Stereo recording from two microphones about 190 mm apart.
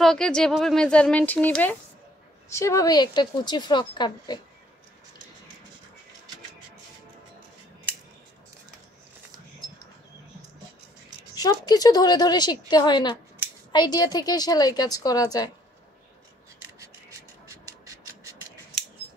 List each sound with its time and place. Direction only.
0.0 s a woman's voice: 5° left (ahead or behind); by 4.4 s 25° left (ahead or behind)
11.3 s a woman's voice: 20° left (ahead or behind)
16.8 s a sound: 15° right (ahead or behind)